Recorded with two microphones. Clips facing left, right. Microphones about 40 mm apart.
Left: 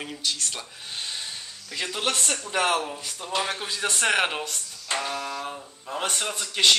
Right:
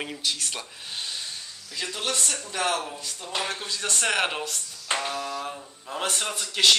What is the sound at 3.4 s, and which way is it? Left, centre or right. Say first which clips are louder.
Speech: left 2 dB; centre.